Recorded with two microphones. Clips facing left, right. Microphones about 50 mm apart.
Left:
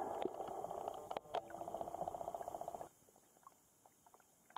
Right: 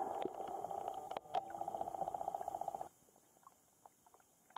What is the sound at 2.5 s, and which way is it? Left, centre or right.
Purr, centre.